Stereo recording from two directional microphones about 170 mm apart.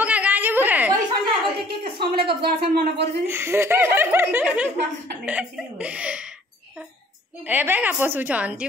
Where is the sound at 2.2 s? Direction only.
65° right (ahead or behind).